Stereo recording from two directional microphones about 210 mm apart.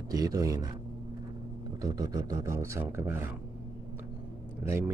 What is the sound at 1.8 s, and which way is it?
Speech, 15° right (ahead or behind).